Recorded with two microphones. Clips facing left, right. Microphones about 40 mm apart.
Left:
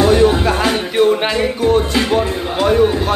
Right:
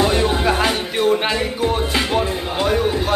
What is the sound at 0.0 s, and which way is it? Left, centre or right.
Music, centre.